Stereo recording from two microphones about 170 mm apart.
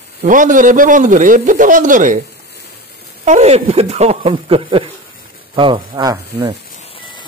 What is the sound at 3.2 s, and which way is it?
Speech, 40° right (ahead or behind).